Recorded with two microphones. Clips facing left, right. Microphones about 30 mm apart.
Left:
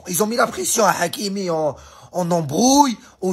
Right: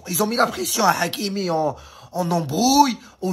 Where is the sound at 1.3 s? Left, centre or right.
Right.